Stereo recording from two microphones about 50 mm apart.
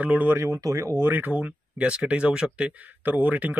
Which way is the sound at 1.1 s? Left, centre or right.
Right.